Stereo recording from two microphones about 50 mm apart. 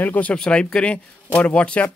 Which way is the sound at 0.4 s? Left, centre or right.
Centre.